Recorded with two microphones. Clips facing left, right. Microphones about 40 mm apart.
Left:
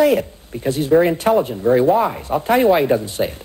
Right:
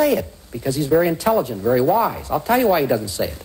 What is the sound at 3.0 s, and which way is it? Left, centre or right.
Speech, left.